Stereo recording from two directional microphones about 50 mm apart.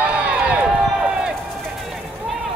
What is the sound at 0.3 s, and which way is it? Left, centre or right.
Run, right.